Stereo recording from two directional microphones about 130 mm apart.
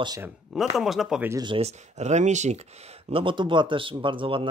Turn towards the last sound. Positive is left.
turn(degrees=-40)  # may be behind; listen again after turning